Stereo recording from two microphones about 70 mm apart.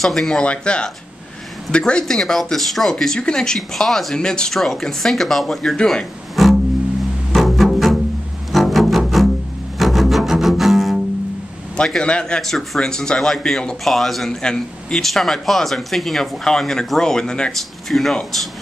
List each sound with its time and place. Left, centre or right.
0.0 s speech: centre
0.4 s speech: centre
6.4 s music: centre
9.8 s double bass: centre
11.7 s speech: centre